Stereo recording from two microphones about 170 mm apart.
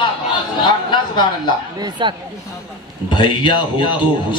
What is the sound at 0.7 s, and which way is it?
Speech, 25° left (ahead or behind).